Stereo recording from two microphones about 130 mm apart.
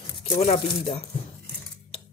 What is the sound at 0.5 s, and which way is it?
Speech, 50° left (ahead or behind).